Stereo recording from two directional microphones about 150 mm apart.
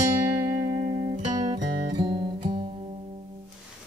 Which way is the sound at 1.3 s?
30° right (ahead or behind).